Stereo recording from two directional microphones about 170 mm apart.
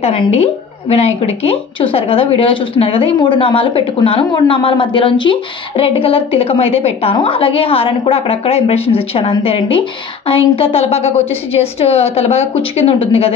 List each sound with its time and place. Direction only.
0.0 s a woman's voice: 35° left (ahead or behind)